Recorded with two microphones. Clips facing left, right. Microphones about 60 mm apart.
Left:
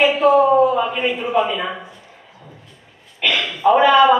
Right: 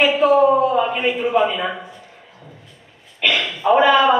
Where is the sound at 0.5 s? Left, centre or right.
Centre.